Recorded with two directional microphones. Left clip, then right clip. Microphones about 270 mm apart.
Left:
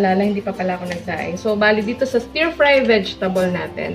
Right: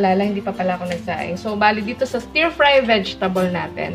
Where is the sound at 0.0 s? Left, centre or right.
Right.